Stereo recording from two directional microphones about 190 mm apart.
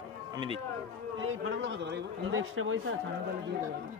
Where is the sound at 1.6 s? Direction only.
70° right (ahead or behind); by 2.8 s 90° right.